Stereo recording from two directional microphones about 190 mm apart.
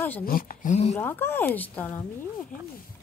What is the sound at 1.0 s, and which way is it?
Speech, 10° left (ahead or behind).